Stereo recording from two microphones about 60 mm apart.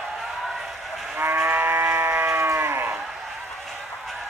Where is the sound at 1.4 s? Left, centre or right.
Right.